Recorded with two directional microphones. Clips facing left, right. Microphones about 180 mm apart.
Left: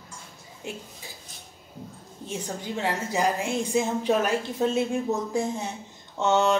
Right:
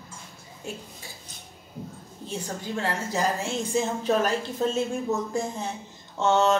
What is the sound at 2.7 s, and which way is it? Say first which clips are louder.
Speech: left 1 dB; 15° left (ahead or behind).